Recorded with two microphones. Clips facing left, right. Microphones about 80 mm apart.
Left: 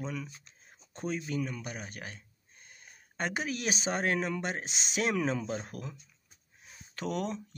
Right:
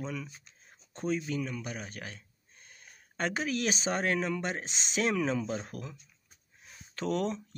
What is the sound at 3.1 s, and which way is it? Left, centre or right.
Speech, centre.